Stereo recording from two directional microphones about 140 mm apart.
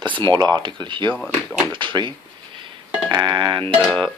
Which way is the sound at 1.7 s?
35° right (ahead or behind).